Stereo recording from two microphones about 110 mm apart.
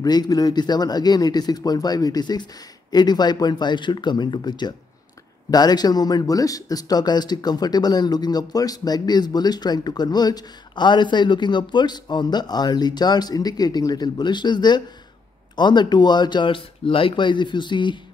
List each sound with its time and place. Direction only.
0.0 s speech: 35° left (ahead or behind)